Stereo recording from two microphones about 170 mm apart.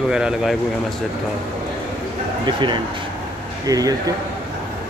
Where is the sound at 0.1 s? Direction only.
5° right (ahead or behind).